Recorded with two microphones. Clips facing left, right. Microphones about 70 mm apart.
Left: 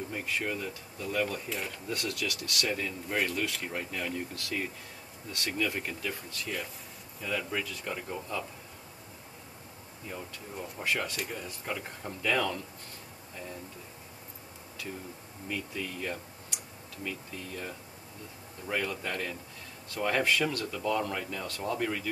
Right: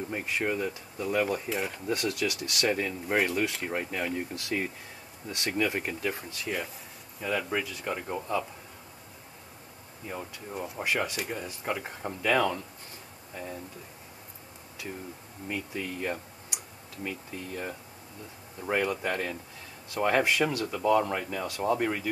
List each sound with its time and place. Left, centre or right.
0.1 s speech: right
1.9 s speech: right
10.1 s speech: centre
15.4 s speech: centre